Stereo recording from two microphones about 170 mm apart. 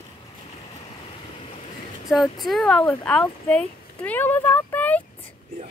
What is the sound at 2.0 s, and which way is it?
Speech, centre (ahead or behind).